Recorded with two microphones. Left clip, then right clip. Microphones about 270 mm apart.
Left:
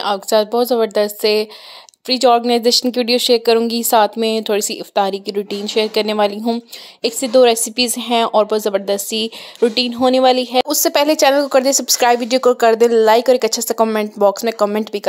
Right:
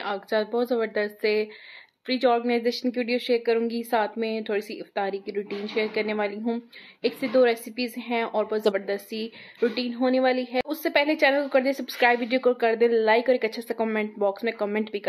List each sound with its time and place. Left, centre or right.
0.0 s a woman's voice: left